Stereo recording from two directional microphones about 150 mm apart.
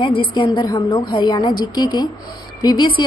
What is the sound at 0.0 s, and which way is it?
A woman's voice, 35° left (ahead or behind).